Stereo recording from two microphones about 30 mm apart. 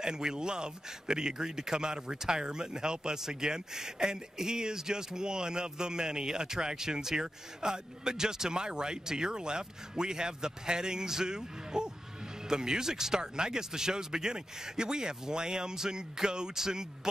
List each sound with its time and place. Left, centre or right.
0.0 s speech: right